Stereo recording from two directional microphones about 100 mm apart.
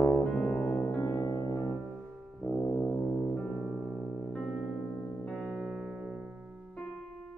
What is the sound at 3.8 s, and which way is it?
Music, 5° left (ahead or behind).